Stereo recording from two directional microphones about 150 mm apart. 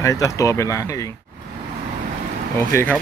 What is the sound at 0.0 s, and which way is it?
Speech, 20° left (ahead or behind).